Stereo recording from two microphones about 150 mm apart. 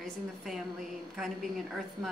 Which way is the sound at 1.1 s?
Centre (ahead or behind).